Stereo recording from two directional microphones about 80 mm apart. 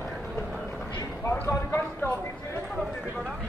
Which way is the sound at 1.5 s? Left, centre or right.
Left.